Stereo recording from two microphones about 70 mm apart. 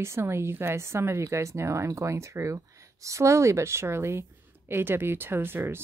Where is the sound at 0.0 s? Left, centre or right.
Right.